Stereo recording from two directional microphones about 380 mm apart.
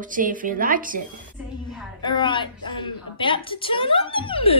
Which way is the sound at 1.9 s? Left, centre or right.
Centre.